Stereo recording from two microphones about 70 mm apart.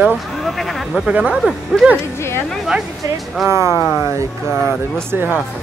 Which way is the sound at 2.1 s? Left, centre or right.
Left.